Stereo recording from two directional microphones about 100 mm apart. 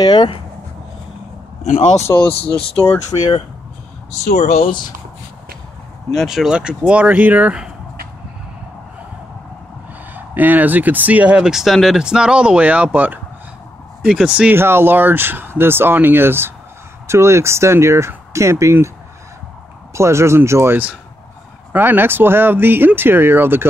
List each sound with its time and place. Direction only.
0.0 s speech: 45° left (ahead or behind)
2.1 s speech: 35° left (ahead or behind)
2.4 s speech: 65° left (ahead or behind)
4.4 s speech: 90° left
4.6 s speech: 50° left (ahead or behind)
6.1 s speech: 5° right (ahead or behind)
10.1 s speech: 20° right (ahead or behind)
14.5 s speech: 25° right (ahead or behind)
19.9 s speech: 30° right (ahead or behind)